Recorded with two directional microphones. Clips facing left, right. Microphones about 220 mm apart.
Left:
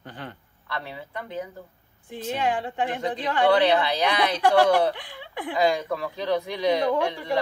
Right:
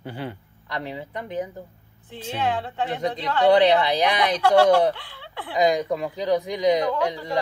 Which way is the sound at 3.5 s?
15° right (ahead or behind).